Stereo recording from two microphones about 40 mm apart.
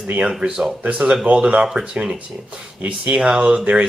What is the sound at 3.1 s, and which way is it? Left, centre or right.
Speech, right.